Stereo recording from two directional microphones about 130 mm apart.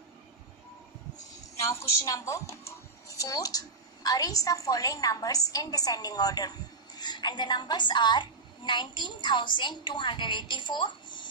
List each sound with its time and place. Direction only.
1.6 s a child's voice: 20° left (ahead or behind)